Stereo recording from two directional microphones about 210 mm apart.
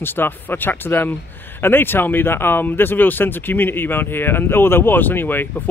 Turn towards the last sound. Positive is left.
turn(degrees=10)  # may be behind; listen again after turning